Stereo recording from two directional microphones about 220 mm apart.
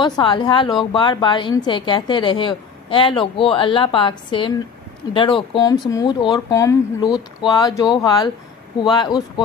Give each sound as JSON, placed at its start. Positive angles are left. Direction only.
{"t": 0.0, "sound": "a woman's voice", "side_deg": 20}